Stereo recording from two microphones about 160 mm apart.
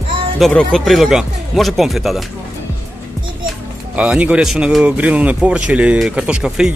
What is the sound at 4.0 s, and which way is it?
A man's voice, 5° right (ahead or behind).